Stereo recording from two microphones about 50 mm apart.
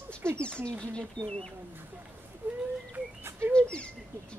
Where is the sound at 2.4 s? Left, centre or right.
Right.